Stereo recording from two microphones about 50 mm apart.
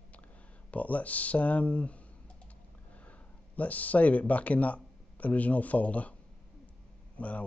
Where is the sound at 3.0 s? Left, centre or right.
Left.